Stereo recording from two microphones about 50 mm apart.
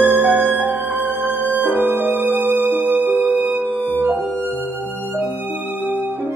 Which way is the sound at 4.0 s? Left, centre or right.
Right.